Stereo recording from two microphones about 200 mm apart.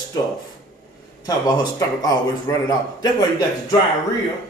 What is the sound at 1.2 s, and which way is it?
A man's voice, 20° left (ahead or behind).